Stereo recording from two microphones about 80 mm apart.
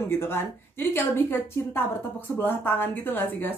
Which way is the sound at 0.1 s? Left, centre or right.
Left.